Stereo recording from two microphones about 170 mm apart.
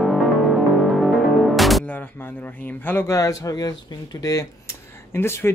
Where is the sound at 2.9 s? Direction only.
15° left (ahead or behind).